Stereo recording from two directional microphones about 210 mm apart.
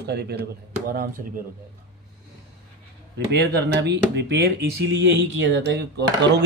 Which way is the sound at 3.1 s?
50° right (ahead or behind).